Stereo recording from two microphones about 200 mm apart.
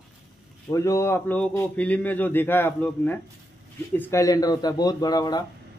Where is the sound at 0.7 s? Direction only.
15° left (ahead or behind).